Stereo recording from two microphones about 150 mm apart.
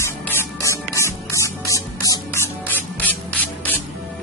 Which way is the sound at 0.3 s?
15° left (ahead or behind).